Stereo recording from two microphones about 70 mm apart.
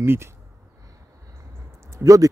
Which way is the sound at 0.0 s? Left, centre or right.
Right.